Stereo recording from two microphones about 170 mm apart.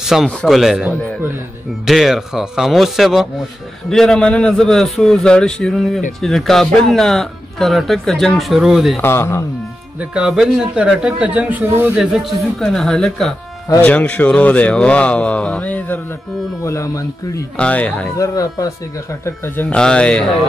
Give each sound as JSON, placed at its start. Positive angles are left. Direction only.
{"t": 0.0, "sound": "speech", "side_deg": 0}
{"t": 9.0, "sound": "speech", "side_deg": 15}
{"t": 9.9, "sound": "speech", "side_deg": -5}
{"t": 17.6, "sound": "speech", "side_deg": 10}
{"t": 18.1, "sound": "speech", "side_deg": 20}